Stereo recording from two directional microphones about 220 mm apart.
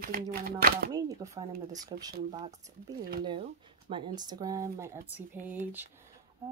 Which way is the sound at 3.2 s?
25° right (ahead or behind).